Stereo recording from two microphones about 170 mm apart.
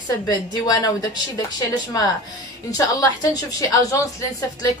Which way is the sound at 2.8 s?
20° left (ahead or behind).